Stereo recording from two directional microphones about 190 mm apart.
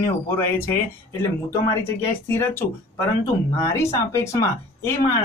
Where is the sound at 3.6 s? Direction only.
15° left (ahead or behind).